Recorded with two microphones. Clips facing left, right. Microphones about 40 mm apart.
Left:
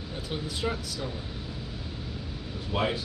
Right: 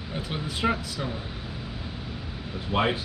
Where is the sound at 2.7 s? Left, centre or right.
Right.